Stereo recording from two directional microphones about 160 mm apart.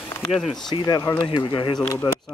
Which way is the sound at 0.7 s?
25° left (ahead or behind).